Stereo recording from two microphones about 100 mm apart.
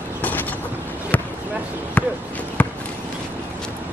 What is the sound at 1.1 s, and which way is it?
Basketball bounce, 15° left (ahead or behind).